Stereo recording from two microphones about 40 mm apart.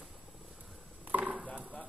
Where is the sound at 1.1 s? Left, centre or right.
Right.